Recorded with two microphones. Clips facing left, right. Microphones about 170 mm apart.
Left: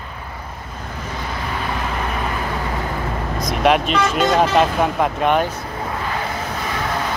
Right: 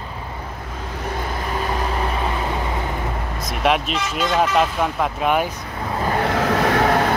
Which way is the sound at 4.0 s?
50° left (ahead or behind).